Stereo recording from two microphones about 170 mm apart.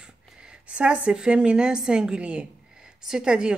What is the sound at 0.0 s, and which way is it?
Speech, 5° right (ahead or behind).